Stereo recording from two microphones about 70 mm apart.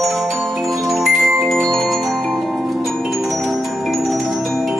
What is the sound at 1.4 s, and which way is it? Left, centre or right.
Mallet percussion, centre.